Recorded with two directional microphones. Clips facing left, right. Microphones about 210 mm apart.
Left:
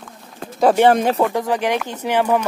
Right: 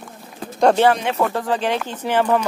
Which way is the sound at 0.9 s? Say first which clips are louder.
Left 5 dB; 40° left (ahead or behind).